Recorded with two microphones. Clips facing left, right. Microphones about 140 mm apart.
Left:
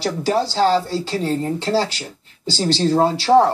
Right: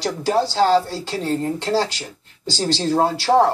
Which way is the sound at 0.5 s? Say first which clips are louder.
Even; centre (ahead or behind).